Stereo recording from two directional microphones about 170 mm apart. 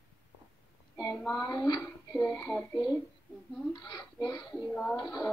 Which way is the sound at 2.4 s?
5° left (ahead or behind).